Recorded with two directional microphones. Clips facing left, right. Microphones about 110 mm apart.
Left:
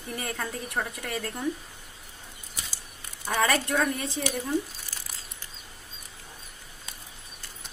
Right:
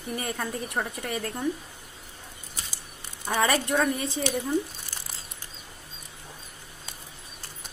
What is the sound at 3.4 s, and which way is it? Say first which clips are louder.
Speech: right 1 dB; 20° right (ahead or behind).